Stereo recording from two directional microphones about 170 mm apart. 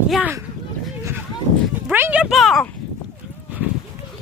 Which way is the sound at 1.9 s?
10° right (ahead or behind).